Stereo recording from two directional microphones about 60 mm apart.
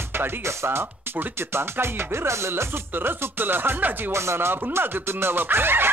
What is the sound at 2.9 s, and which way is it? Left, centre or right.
Music, right.